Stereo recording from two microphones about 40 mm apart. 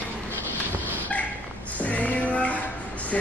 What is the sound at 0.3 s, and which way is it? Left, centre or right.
Dog, left.